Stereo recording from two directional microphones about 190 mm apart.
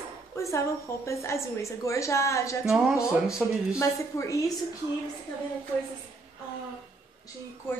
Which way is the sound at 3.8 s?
15° left (ahead or behind).